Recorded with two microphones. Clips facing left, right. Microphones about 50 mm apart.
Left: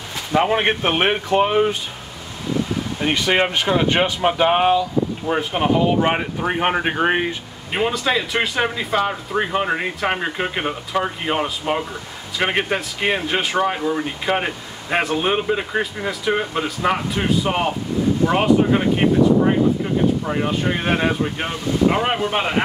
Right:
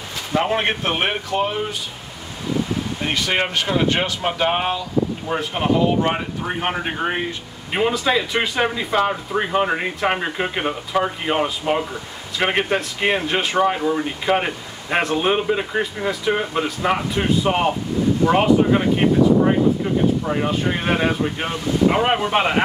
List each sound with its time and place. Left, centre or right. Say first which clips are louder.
0.3 s speech: left 2 dB; centre; by 1.8 s left
3.0 s speech: left 4 dB; centre
7.7 s speech: right 1 dB; centre